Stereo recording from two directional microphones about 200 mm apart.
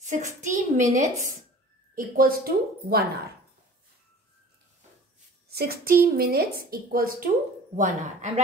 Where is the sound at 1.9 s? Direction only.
45° right (ahead or behind).